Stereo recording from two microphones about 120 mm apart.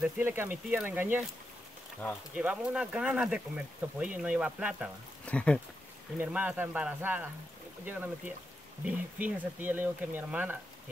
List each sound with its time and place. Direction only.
0.0 s speech: 15° right (ahead or behind)
2.0 s speech: 10° left (ahead or behind)
2.3 s speech: 10° right (ahead or behind)
5.2 s speech: 10° left (ahead or behind)
6.1 s speech: 15° right (ahead or behind)